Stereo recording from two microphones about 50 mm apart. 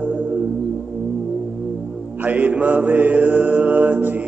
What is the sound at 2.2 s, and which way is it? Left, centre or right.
Mantra, right.